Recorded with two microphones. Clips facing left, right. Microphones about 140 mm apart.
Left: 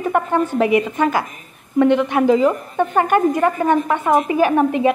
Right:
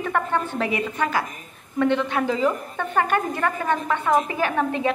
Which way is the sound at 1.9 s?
15° left (ahead or behind).